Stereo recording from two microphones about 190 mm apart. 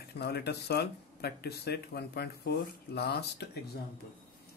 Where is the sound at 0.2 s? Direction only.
60° left (ahead or behind).